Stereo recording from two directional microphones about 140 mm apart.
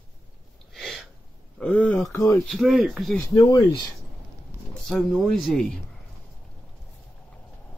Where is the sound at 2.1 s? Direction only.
20° left (ahead or behind).